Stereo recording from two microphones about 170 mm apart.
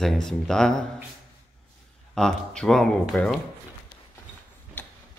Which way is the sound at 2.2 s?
5° left (ahead or behind).